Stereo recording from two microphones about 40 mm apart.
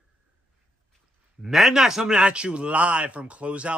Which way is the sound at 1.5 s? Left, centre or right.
Centre.